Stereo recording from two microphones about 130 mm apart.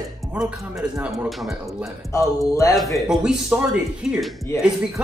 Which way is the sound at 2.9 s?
5° right (ahead or behind).